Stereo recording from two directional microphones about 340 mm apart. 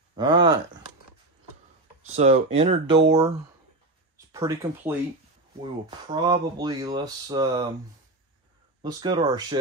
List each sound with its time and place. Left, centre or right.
0.1 s speech: centre
2.0 s speech: centre
4.3 s speech: centre
8.8 s speech: centre